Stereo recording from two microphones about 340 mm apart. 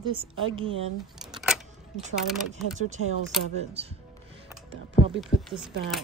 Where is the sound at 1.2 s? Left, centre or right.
Centre.